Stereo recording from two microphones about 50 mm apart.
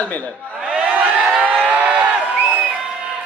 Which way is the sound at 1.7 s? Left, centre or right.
Right.